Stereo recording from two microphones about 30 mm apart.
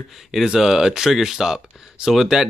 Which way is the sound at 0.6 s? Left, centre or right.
Centre.